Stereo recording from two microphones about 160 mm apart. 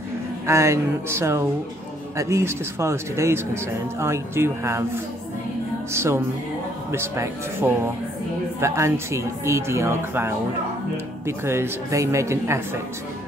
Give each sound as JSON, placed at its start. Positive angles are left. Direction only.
{"t": 0.5, "sound": "speech", "side_deg": -15}